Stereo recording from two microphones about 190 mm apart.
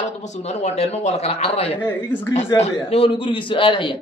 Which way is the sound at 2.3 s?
30° left (ahead or behind).